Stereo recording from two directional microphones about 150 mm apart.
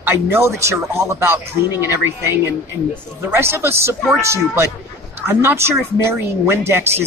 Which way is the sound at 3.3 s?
15° right (ahead or behind).